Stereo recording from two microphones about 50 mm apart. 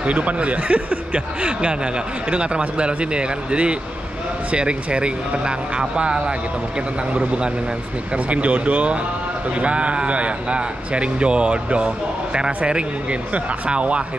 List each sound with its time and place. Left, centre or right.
0.0 s speech: right